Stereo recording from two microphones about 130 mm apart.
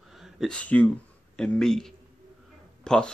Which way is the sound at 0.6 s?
10° left (ahead or behind).